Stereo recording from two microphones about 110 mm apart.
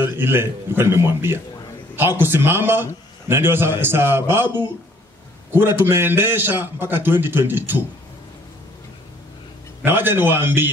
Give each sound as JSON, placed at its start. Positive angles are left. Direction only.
{"t": 0.0, "sound": "a man's voice", "side_deg": -20}
{"t": 9.8, "sound": "a man's voice", "side_deg": -20}